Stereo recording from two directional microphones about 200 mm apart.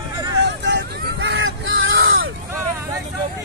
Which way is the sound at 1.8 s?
85° right.